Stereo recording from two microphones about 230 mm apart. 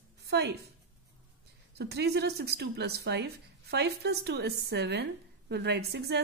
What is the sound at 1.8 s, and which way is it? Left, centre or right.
Speech, right.